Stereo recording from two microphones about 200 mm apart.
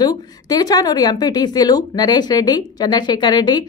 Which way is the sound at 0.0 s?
20° left (ahead or behind).